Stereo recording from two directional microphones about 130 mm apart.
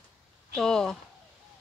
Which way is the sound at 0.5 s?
5° left (ahead or behind).